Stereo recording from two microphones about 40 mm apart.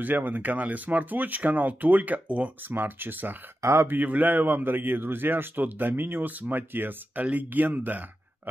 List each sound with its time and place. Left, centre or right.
0.0 s speech: right
2.7 s a man's voice: right
4.0 s a man's voice: right
7.2 s speech: right